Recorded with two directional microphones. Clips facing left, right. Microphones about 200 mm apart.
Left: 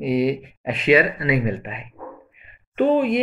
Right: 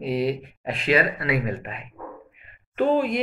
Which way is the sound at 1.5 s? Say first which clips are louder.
Left 3 dB; 40° right (ahead or behind).